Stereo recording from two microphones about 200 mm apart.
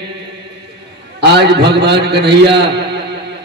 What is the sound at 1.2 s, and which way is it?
A man's voice, 55° right (ahead or behind).